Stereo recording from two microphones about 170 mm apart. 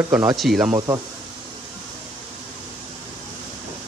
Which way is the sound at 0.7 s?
20° right (ahead or behind).